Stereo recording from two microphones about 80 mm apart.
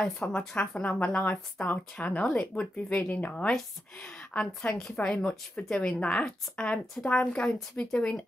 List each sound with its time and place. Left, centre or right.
0.0 s a woman's voice: centre